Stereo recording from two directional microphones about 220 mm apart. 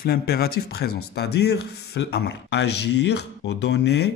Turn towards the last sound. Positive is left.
turn(degrees=50)  # may be behind; listen again after turning